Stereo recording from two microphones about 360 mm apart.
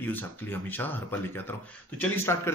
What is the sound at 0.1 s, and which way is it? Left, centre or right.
Speech, centre.